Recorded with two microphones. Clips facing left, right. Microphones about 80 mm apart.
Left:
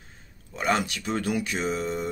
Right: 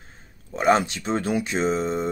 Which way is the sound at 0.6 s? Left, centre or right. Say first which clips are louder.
Right 6 dB; right.